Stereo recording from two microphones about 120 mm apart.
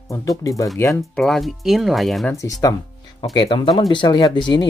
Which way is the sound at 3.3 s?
40° left (ahead or behind).